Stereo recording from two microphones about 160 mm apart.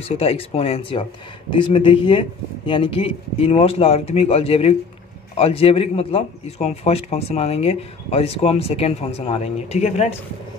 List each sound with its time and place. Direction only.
0.0 s speech: 40° left (ahead or behind)